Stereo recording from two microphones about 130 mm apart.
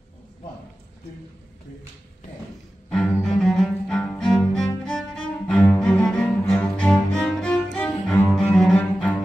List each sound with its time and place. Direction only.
2.9 s cello: 5° left (ahead or behind)